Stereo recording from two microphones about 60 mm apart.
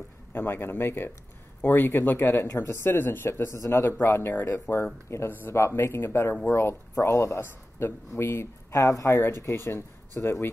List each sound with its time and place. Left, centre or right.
0.3 s speech: left
2.5 s speech: left
2.8 s speech: left
4.0 s speech: left
7.0 s speech: left
7.8 s speech: left
9.2 s speech: left